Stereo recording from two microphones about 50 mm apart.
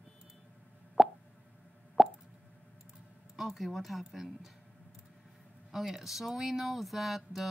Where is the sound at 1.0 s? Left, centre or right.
Centre.